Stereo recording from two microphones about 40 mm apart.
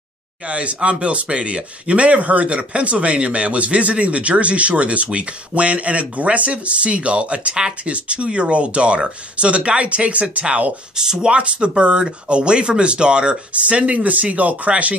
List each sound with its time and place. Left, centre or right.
0.5 s speech: right
11.0 s speech: centre; by 15.0 s right